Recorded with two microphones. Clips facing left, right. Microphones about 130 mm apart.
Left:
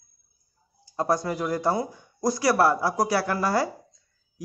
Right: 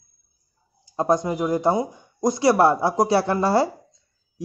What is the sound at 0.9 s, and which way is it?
A man's voice, 20° right (ahead or behind).